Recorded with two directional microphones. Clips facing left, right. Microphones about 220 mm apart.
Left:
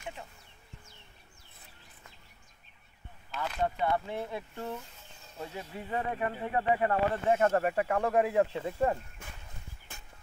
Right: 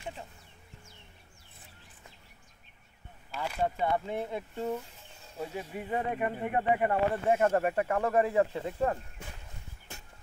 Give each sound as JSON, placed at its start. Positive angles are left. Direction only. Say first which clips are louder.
{"t": 3.3, "sound": "speech", "louder": "right 1 dB", "side_deg": -10}
{"t": 3.9, "sound": "speech", "louder": "right 1 dB", "side_deg": -20}
{"t": 7.7, "sound": "speech", "louder": "even", "side_deg": 5}